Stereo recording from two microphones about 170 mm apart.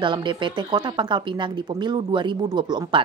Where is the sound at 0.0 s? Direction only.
30° right (ahead or behind).